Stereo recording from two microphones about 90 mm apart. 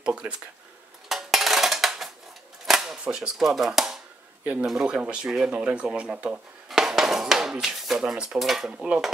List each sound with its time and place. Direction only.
0.0 s speech: 10° right (ahead or behind)
1.0 s dishes: 5° right (ahead or behind)
2.6 s speech: 5° right (ahead or behind)
8.8 s dishes: 5° right (ahead or behind)